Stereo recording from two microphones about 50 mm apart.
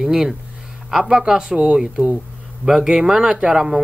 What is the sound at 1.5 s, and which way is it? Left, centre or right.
Speech, right.